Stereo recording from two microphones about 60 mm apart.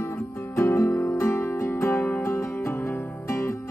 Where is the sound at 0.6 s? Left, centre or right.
Left.